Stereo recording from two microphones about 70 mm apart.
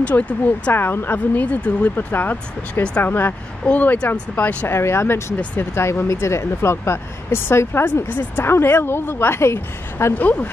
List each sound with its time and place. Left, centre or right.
0.1 s speech: left
3.0 s speech: left
4.6 s speech: left
10.1 s speech: left